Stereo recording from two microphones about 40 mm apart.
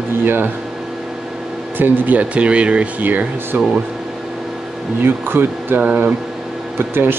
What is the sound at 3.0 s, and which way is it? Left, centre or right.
Speech, right.